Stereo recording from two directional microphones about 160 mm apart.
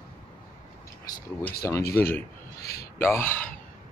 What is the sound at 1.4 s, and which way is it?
Speech, 20° left (ahead or behind).